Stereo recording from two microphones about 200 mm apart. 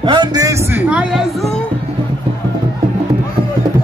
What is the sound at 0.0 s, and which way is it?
Speech, 25° right (ahead or behind).